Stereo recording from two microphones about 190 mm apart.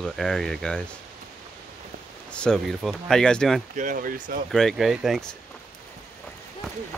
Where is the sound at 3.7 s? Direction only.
45° right (ahead or behind).